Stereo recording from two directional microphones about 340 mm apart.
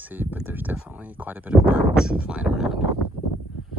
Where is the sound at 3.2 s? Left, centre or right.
Left.